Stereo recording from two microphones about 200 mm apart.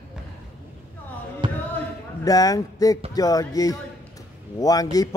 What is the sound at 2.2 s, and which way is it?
A man's voice, 20° left (ahead or behind).